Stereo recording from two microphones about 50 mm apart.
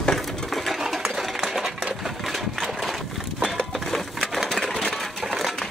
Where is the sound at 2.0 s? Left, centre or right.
Centre.